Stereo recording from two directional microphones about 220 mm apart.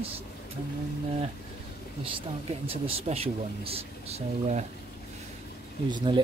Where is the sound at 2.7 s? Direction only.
25° right (ahead or behind).